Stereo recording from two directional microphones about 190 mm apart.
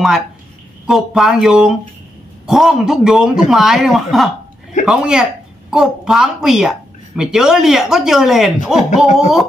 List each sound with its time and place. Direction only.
0.8 s speech: centre (ahead or behind)